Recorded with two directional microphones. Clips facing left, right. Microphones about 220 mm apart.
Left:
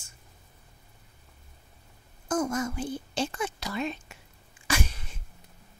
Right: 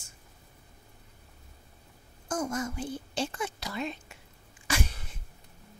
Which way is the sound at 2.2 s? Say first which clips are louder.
Left 4 dB; 90° left.